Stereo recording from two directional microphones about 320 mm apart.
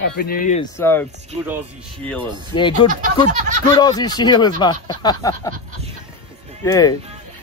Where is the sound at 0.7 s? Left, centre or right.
Centre.